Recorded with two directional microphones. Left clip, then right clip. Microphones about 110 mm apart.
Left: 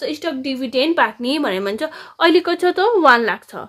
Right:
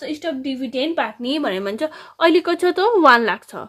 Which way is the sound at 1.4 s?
Centre (ahead or behind).